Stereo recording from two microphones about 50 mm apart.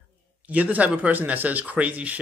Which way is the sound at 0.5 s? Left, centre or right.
Right.